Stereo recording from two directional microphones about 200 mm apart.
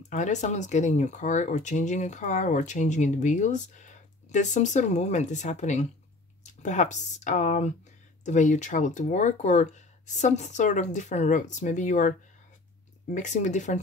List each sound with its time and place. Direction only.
0.1 s speech: 35° left (ahead or behind)